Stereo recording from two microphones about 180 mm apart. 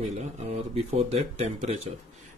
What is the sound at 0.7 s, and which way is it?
Speech, 35° right (ahead or behind).